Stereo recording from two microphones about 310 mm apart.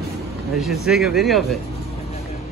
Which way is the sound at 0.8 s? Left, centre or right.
Centre.